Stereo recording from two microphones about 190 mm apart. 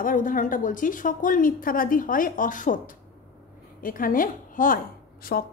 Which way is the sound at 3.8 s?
45° left (ahead or behind).